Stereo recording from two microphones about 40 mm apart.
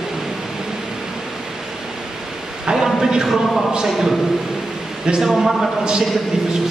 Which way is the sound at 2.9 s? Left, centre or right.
Centre.